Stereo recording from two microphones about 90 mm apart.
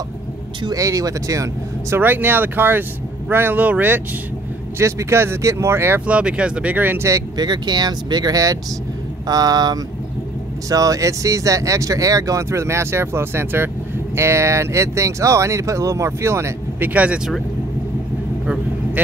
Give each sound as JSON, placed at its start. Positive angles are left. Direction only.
{"t": 0.7, "sound": "speech", "side_deg": -40}
{"t": 2.0, "sound": "speech", "side_deg": -20}
{"t": 4.7, "sound": "speech", "side_deg": -30}
{"t": 6.0, "sound": "speech", "side_deg": -15}
{"t": 7.1, "sound": "speech", "side_deg": -35}
{"t": 7.4, "sound": "speech", "side_deg": -50}
{"t": 16.9, "sound": "speech", "side_deg": -15}